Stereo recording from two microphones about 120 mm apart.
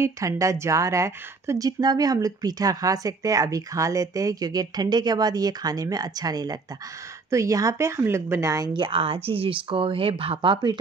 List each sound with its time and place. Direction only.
0.0 s speech: 25° right (ahead or behind)
8.7 s speech: 45° right (ahead or behind)